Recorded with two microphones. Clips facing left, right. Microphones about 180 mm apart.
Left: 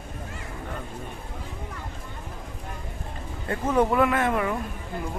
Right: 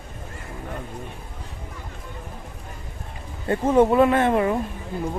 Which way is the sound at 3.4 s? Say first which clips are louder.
Right 5 dB; 25° right (ahead or behind).